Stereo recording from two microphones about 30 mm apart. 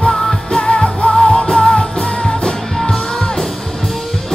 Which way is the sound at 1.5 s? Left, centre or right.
Centre.